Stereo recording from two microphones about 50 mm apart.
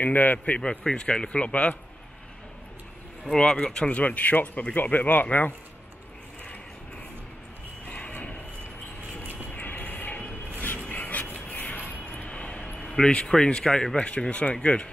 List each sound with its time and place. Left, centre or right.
0.0 s speech: left
0.6 s speech: centre
3.3 s speech: centre; by 5.5 s left
7.9 s a sound: left
9.2 s vehicle: right
9.5 s vehicle: left
10.9 s a sound: left
12.8 s speech: centre